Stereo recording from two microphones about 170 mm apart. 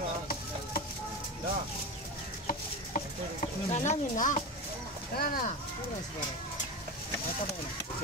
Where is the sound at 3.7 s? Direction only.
45° left (ahead or behind).